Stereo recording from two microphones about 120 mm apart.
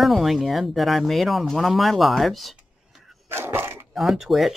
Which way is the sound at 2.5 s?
Centre (ahead or behind).